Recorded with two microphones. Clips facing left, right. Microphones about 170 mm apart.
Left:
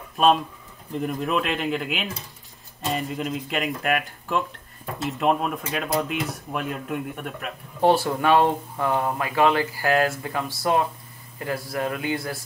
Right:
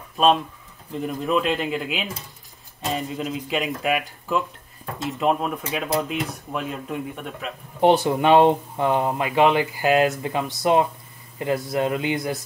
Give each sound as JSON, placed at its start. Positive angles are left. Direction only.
{"t": 0.9, "sound": "speech", "side_deg": 0}
{"t": 7.8, "sound": "speech", "side_deg": -20}